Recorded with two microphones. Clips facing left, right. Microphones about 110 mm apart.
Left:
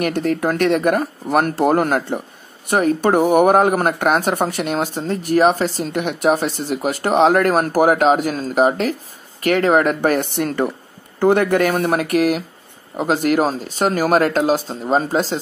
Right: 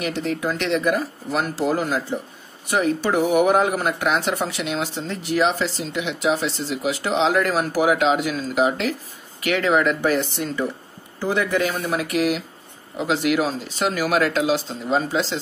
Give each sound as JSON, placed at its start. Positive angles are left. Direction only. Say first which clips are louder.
{"t": 0.0, "sound": "speech", "louder": "left 6 dB", "side_deg": 55}
{"t": 2.7, "sound": "speech", "louder": "left 5 dB", "side_deg": 50}